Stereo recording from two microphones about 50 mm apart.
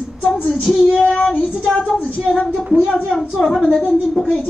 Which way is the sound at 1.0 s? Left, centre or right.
Centre.